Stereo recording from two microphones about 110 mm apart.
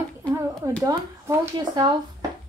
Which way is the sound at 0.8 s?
30° right (ahead or behind).